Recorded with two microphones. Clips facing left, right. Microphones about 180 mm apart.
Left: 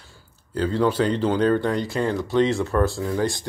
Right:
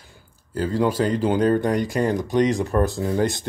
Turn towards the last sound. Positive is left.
turn(degrees=-20)  # may be behind; listen again after turning